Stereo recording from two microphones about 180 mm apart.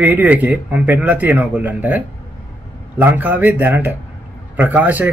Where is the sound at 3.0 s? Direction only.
10° right (ahead or behind).